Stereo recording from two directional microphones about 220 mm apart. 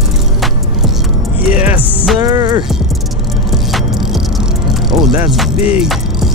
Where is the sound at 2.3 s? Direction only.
20° right (ahead or behind).